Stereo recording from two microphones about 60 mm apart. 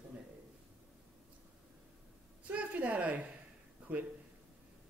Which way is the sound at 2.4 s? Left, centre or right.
Right.